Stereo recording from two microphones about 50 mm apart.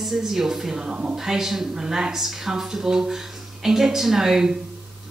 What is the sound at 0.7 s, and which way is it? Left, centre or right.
Speech, right.